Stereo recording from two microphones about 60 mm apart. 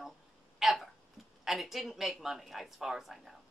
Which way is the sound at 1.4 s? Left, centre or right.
Centre.